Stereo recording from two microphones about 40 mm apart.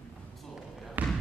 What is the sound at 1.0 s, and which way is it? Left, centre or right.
Basketball bounce, right.